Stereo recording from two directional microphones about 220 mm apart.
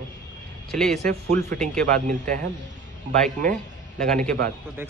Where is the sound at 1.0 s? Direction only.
40° right (ahead or behind).